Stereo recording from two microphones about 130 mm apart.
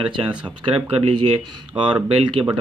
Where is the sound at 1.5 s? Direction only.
35° right (ahead or behind).